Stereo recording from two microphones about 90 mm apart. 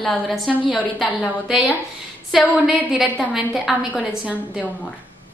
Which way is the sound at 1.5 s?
Centre (ahead or behind).